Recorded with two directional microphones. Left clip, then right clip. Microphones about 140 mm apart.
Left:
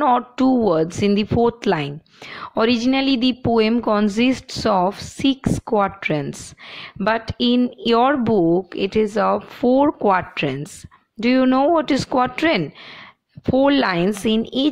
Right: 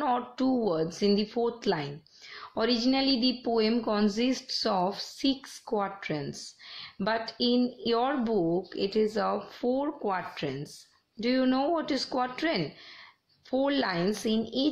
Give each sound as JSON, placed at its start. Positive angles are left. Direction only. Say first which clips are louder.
{"t": 0.0, "sound": "a woman's voice", "louder": "left 11 dB", "side_deg": 45}
{"t": 8.7, "sound": "a woman's voice", "louder": "left 9 dB", "side_deg": 35}